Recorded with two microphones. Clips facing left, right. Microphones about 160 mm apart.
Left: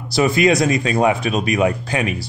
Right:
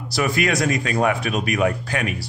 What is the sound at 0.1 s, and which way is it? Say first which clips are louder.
Speech: left 6 dB; 20° left (ahead or behind).